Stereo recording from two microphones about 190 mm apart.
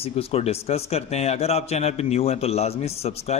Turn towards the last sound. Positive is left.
turn(degrees=35)  # may be behind; listen again after turning